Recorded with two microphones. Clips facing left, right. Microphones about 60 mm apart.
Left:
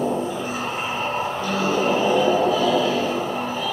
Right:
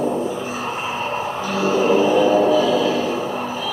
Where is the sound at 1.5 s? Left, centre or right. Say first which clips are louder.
Right 5 dB; right.